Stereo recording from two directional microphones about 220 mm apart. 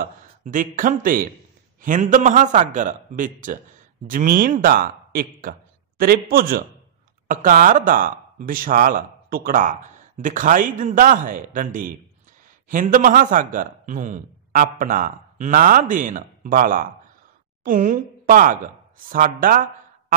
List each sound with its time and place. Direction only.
0.4 s a woman's voice: 35° right (ahead or behind)